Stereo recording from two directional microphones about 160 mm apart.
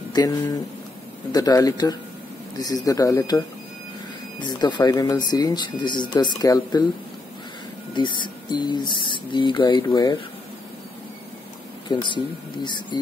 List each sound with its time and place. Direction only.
0.1 s speech: 25° left (ahead or behind)
7.9 s speech: 30° left (ahead or behind)
11.9 s speech: 30° left (ahead or behind)